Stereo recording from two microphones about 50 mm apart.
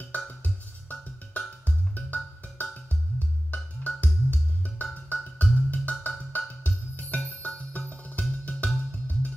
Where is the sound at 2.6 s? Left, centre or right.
Left.